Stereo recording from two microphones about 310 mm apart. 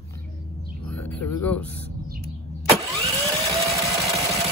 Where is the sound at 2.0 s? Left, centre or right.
Right.